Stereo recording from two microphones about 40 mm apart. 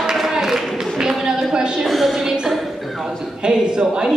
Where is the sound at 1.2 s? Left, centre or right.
Centre.